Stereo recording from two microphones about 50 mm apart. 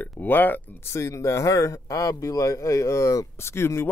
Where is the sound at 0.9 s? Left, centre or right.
Left.